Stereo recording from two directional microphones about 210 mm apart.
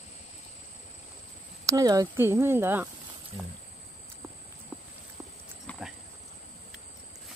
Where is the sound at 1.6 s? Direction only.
15° right (ahead or behind).